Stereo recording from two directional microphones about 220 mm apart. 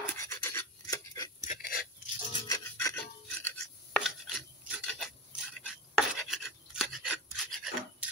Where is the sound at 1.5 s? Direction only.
40° left (ahead or behind).